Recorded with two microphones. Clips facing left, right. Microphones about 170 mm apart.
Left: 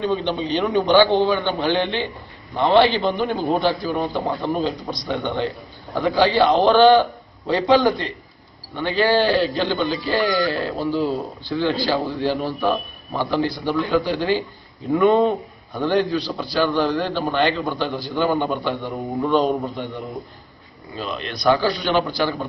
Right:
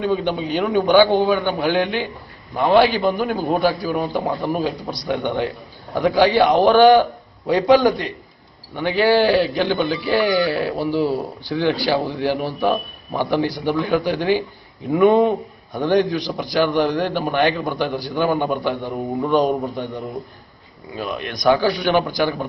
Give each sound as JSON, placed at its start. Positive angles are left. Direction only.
{"t": 0.0, "sound": "a man's voice", "side_deg": -10}